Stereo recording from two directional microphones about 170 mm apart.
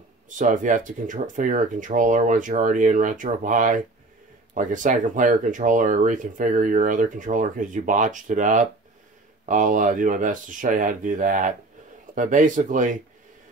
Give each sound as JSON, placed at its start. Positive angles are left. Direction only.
{"t": 0.4, "sound": "speech", "side_deg": -50}